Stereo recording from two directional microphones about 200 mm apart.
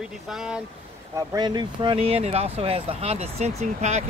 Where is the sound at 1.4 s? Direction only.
25° right (ahead or behind).